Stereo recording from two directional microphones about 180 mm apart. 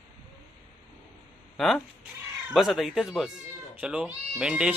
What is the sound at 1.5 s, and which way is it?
Speech, centre (ahead or behind).